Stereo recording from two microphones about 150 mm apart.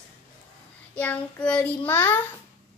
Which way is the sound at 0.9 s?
10° left (ahead or behind).